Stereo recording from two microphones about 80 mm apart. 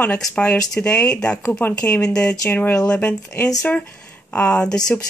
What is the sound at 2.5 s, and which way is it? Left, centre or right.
Speech, left.